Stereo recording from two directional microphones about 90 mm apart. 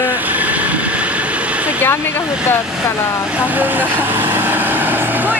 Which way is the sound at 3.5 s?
20° right (ahead or behind).